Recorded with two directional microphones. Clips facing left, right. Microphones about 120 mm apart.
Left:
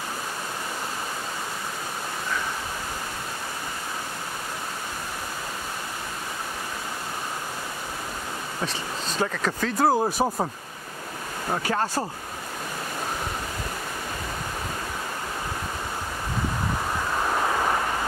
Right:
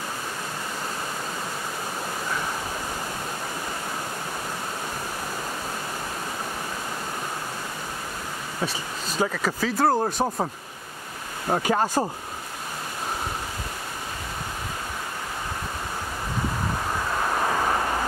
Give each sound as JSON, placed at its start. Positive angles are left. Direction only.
{"t": 8.6, "sound": "speech", "side_deg": -10}
{"t": 11.5, "sound": "speech", "side_deg": -15}